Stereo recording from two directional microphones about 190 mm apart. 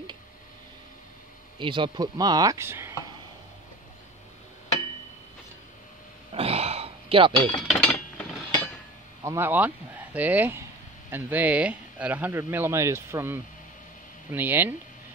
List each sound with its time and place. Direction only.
1.6 s speech: 25° right (ahead or behind)
6.3 s a sound: 30° right (ahead or behind)
7.6 s chink: 5° left (ahead or behind)
9.2 s a man's voice: 15° right (ahead or behind)